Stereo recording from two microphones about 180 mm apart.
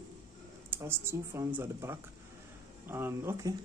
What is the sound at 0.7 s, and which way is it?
Speech, 15° right (ahead or behind).